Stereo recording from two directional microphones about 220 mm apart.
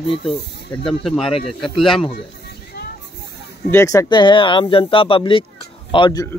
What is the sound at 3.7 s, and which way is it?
Speech, 10° left (ahead or behind).